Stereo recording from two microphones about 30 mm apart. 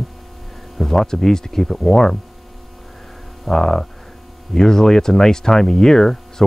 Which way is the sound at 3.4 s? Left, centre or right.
Centre.